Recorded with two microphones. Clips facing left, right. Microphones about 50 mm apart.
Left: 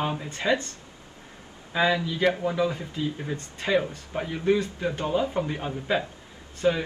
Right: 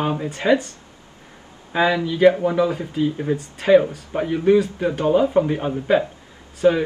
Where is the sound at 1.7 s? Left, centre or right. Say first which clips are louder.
Right 5 dB; right.